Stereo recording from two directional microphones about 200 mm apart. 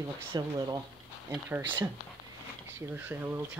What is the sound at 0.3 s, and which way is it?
Speech, 20° right (ahead or behind).